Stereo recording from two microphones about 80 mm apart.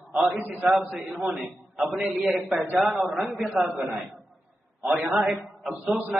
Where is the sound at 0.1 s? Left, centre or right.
Centre.